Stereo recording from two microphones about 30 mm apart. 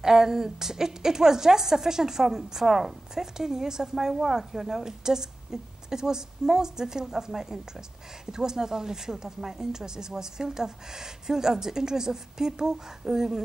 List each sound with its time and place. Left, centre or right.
0.0 s a woman's voice: centre